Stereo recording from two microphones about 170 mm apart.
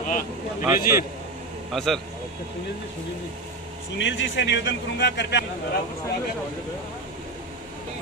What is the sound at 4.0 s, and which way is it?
A man's voice, 90° left.